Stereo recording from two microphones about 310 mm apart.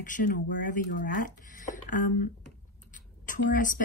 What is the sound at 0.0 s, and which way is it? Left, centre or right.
A woman's voice, left.